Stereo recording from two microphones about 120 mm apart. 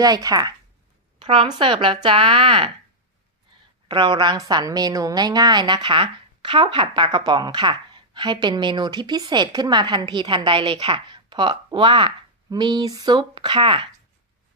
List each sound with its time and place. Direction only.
0.0 s a woman's voice: 30° right (ahead or behind)
1.2 s speech: 50° right (ahead or behind)
3.5 s a sound: 40° right (ahead or behind)
3.9 s a woman's voice: 40° right (ahead or behind)